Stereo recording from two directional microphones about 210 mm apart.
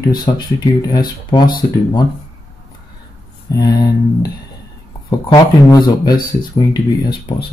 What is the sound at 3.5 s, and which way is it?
Speech, 20° left (ahead or behind).